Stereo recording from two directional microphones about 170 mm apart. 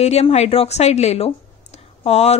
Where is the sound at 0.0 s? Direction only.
40° left (ahead or behind).